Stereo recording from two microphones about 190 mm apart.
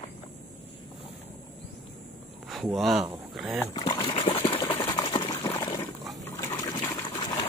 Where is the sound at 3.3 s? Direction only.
Centre (ahead or behind).